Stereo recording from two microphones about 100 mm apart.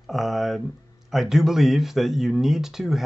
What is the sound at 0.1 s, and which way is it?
Speech, centre (ahead or behind).